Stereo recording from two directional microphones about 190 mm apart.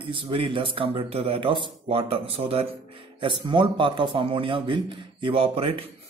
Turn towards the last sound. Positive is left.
turn(degrees=-30)  # may be behind; listen again after turning